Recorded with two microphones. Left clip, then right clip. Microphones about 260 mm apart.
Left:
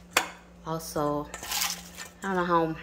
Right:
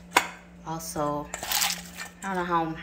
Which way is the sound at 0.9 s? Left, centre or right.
Centre.